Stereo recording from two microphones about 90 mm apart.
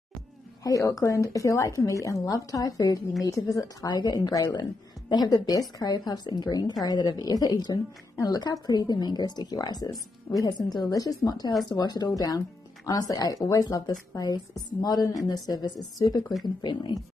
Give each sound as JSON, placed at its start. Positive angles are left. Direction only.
{"t": 0.7, "sound": "a woman's voice", "side_deg": 40}